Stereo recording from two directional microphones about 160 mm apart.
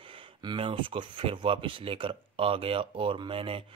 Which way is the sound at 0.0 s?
35° right (ahead or behind).